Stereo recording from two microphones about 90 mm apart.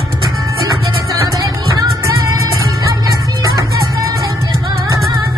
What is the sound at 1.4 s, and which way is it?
Music, 40° right (ahead or behind).